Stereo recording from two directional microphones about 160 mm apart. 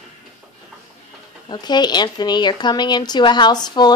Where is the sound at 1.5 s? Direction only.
25° left (ahead or behind).